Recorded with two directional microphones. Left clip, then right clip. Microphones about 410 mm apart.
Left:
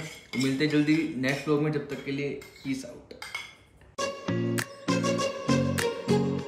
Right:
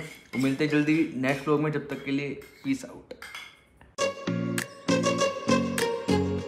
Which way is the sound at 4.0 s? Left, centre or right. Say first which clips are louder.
Right 2 dB; centre.